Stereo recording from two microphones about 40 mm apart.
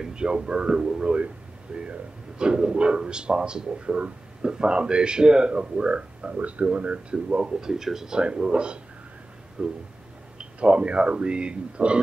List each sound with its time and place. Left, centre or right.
0.0 s a man's voice: right